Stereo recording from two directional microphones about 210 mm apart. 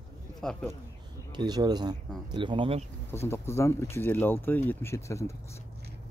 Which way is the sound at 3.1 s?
10° left (ahead or behind).